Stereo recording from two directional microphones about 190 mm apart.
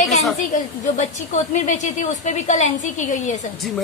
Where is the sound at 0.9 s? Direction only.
40° left (ahead or behind).